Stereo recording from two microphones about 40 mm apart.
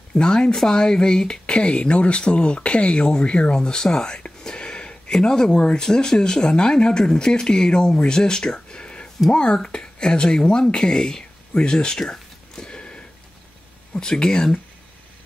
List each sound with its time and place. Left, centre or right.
0.1 s speech: left